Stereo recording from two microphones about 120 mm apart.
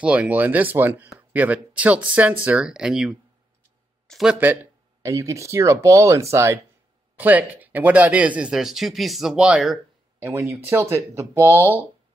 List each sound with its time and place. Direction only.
0.0 s speech: 10° right (ahead or behind)
5.0 s speech: 25° right (ahead or behind); by 9.8 s 5° right (ahead or behind)
10.2 s speech: 20° right (ahead or behind)